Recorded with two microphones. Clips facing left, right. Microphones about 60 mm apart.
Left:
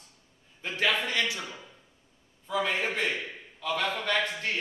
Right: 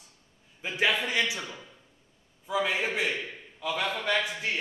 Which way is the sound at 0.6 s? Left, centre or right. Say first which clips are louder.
Right 1 dB; centre.